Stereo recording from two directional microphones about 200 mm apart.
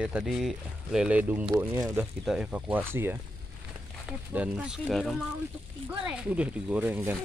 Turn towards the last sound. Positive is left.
turn(degrees=-10)  # may be behind; listen again after turning